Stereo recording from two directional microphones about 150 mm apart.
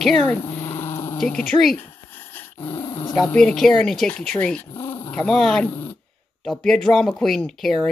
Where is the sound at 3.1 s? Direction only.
5° left (ahead or behind).